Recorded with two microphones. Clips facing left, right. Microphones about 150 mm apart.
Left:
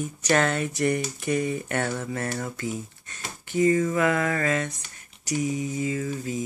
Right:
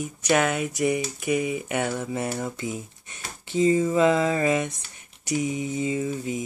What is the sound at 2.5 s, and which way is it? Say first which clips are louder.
Speech: even; 20° right (ahead or behind).